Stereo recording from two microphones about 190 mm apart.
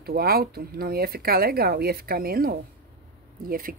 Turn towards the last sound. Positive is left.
turn(degrees=-50)  # may be behind; listen again after turning